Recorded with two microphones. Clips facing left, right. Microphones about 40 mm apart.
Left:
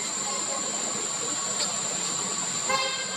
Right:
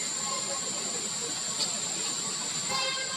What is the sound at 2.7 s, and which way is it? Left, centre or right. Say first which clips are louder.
Vehicle: left 6 dB; left.